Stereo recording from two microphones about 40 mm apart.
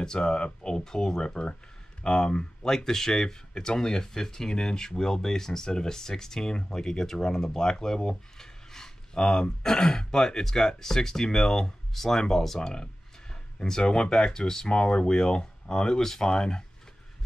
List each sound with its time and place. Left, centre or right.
0.0 s speech: centre